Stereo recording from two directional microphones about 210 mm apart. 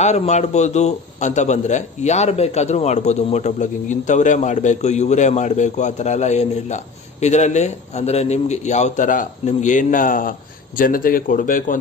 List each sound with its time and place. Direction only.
0.0 s a man's voice: 35° left (ahead or behind)